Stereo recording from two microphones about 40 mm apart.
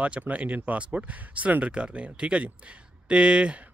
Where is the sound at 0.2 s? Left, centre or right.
Right.